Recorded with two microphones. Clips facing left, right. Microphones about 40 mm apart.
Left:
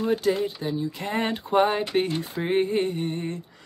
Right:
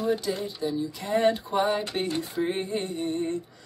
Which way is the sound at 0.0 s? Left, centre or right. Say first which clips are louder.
Left 4 dB; left.